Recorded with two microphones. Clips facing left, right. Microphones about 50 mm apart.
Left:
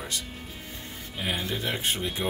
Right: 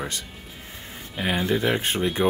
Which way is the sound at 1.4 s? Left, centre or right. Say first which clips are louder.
Right 7 dB; right.